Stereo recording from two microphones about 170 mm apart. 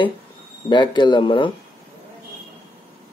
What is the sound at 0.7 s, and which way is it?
Speech, 25° left (ahead or behind).